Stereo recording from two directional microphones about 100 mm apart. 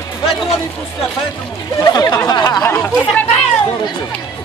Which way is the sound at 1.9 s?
40° left (ahead or behind).